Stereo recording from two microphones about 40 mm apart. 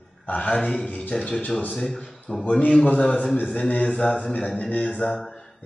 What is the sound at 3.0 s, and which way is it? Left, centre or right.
Speech, left.